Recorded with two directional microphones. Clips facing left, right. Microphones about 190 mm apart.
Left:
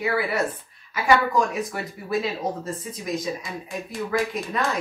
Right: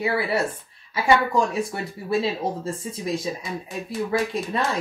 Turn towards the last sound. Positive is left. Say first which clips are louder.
# right 1 dB
turn(degrees=-30)  # may be behind; listen again after turning